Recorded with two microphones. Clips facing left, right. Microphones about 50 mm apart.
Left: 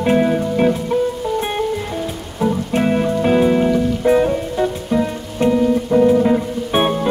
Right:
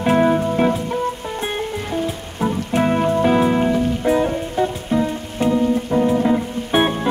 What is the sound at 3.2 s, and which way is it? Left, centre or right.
Music, centre.